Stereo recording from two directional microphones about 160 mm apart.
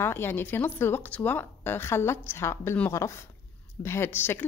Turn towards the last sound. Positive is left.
turn(degrees=15)  # may be behind; listen again after turning